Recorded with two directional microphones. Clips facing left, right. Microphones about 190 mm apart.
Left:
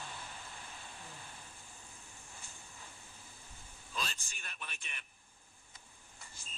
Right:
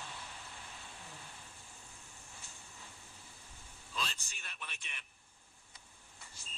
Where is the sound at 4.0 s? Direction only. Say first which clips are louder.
Even; 45° left (ahead or behind).